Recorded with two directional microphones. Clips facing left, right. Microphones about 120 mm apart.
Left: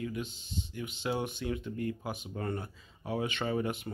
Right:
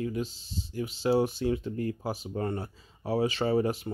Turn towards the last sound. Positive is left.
turn(degrees=-35)  # may be behind; listen again after turning